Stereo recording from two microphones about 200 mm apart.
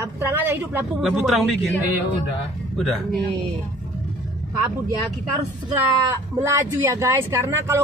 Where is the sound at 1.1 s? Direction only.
Centre (ahead or behind).